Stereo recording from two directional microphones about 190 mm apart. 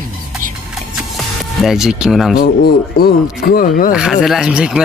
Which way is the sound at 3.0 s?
50° left (ahead or behind).